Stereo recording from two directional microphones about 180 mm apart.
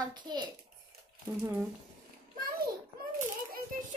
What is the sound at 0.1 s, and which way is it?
Speech, 25° right (ahead or behind).